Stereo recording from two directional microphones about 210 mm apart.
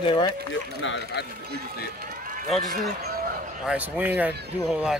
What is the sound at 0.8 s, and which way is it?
Speech, 60° left (ahead or behind).